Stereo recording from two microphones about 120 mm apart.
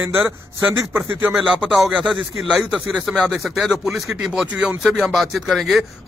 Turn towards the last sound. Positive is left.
turn(degrees=0)  # may be behind; listen again after turning